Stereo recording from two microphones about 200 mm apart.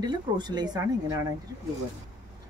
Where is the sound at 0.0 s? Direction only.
20° right (ahead or behind).